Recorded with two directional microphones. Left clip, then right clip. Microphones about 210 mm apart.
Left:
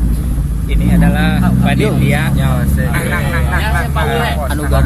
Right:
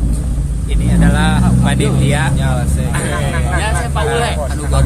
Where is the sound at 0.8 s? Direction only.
15° right (ahead or behind).